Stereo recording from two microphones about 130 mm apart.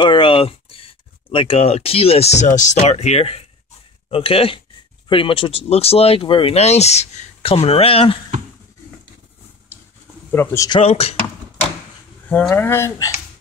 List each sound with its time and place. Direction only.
0.0 s speech: 40° left (ahead or behind)
10.3 s speech: 20° left (ahead or behind)
10.7 s speech: 50° left (ahead or behind)
12.3 s speech: 10° left (ahead or behind)